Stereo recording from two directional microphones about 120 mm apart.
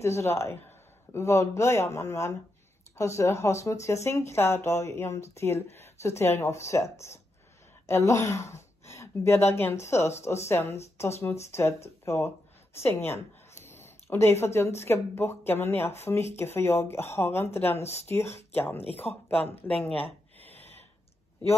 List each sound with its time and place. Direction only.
0.0 s speech: 25° left (ahead or behind)
13.7 s a sound: 20° left (ahead or behind)
14.5 s speech: 20° left (ahead or behind)
19.1 s speech: centre (ahead or behind)
19.5 s speech: 15° left (ahead or behind)